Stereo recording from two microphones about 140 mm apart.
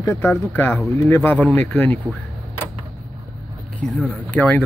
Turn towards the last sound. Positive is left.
turn(degrees=10)  # may be behind; listen again after turning